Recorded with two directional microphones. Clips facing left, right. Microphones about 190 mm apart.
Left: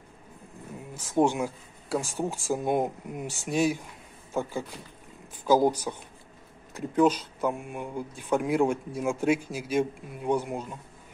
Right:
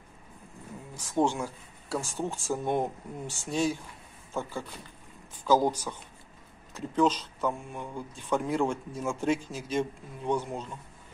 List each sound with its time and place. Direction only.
0.9 s speech: 20° left (ahead or behind)